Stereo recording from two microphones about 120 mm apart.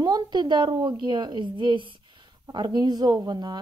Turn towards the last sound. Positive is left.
turn(degrees=-35)  # may be behind; listen again after turning